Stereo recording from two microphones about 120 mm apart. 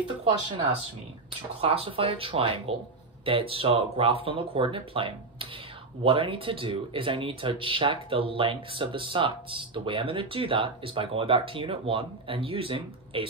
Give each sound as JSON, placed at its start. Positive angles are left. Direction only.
{"t": 1.6, "sound": "speech", "side_deg": -55}